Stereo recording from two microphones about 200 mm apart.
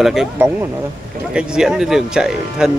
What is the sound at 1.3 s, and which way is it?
Speech, 5° right (ahead or behind).